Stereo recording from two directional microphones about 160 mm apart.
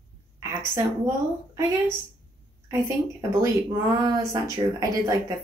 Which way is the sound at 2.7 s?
15° right (ahead or behind).